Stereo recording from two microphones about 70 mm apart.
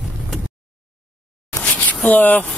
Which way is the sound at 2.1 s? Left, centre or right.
Left.